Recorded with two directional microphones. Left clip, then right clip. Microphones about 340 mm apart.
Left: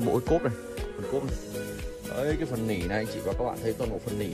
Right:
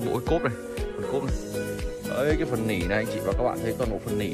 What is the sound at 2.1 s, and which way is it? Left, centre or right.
Speech, centre.